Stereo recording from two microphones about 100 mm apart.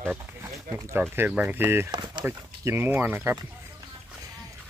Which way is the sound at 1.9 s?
50° right (ahead or behind).